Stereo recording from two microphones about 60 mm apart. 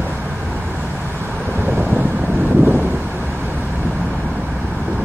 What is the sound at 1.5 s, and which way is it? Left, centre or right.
Vehicle, right.